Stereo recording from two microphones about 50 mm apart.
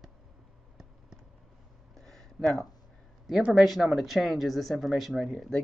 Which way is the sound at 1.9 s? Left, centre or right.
Centre.